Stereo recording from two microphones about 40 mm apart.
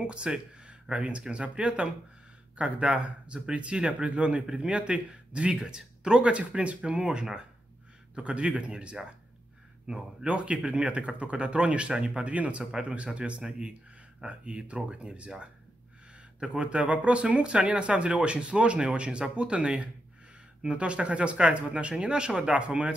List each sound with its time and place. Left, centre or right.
0.0 s a sound: right
0.9 s speech: right
5.6 s speech: centre
9.9 s speech: right
12.3 s speech: right
16.5 s speech: right